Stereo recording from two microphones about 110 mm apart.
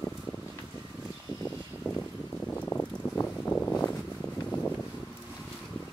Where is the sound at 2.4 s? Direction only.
15° left (ahead or behind).